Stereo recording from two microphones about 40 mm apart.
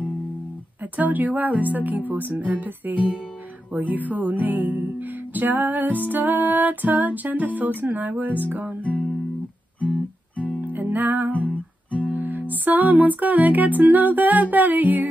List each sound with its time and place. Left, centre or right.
0.9 s music: right
10.7 s music: right